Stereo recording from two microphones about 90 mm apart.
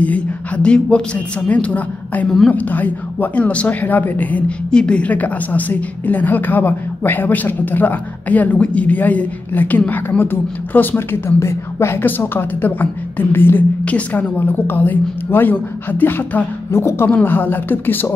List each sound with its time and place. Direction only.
0.0 s speech: 15° left (ahead or behind)
2.2 s a woman's voice: 5° left (ahead or behind)
2.5 s a woman's voice: 20° left (ahead or behind)